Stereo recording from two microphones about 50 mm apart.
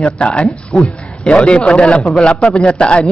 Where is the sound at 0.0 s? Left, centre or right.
Left.